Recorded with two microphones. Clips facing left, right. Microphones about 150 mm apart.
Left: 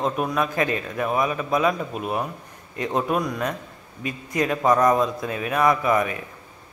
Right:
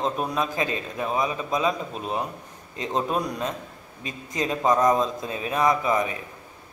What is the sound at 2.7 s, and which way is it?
A man's voice, 25° right (ahead or behind).